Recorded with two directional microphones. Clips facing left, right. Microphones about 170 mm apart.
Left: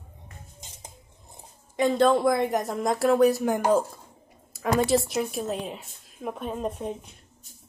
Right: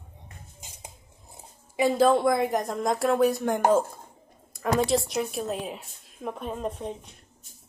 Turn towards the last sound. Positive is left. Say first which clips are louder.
# left 1 dB
turn(degrees=5)  # may be behind; listen again after turning